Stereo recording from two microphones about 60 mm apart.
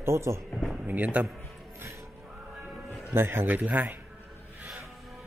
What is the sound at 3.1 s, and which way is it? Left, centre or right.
Speech, right.